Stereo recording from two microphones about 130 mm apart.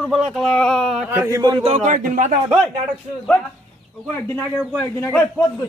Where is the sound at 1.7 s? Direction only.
65° right (ahead or behind); by 2.3 s 80° right.